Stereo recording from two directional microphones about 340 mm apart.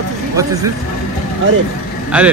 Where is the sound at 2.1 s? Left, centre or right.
Centre.